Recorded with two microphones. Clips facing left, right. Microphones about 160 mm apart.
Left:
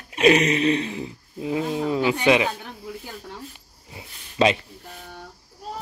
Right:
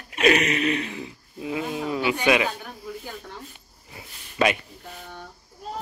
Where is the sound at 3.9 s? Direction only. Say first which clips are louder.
Left 2 dB; 25° left (ahead or behind).